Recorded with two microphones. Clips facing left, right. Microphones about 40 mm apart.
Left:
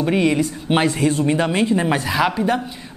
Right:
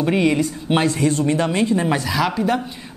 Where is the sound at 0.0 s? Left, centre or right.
Centre.